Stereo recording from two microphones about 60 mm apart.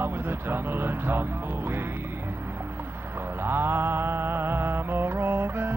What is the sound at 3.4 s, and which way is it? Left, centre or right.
Mantra, right.